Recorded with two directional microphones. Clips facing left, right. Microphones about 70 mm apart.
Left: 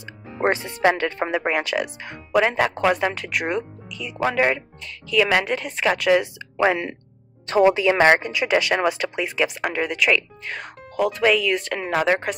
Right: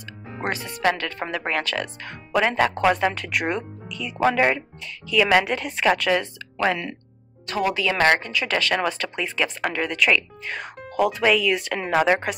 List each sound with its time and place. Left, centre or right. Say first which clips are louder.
0.4 s speech: left 5 dB; left; by 6.2 s centre
6.6 s speech: left 3 dB; left; by 12.4 s centre